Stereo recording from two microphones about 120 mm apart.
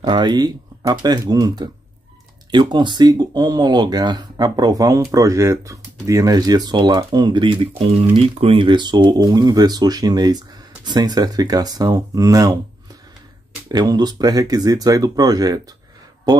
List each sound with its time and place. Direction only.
0.0 s speech: 40° right (ahead or behind)
8.0 s speech: 55° right (ahead or behind); by 12.5 s 30° right (ahead or behind)
13.7 s speech: 35° right (ahead or behind)